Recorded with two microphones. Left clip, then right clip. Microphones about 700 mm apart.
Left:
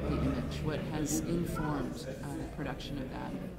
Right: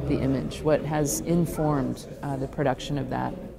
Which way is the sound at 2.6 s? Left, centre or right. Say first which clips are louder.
Right 13 dB; right.